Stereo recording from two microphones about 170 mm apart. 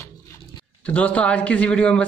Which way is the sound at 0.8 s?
10° left (ahead or behind).